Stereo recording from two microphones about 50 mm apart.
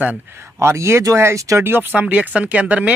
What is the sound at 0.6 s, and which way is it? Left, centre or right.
Speech, right.